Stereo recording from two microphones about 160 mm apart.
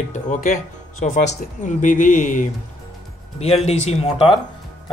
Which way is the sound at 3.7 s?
40° left (ahead or behind).